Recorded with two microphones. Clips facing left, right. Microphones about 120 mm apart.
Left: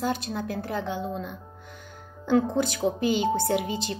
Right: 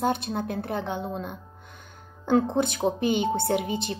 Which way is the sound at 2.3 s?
25° right (ahead or behind).